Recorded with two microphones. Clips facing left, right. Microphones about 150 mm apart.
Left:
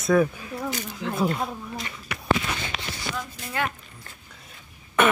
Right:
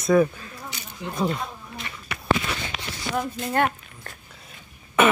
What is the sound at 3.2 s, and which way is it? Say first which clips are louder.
Speech: right 8 dB; 50° right (ahead or behind).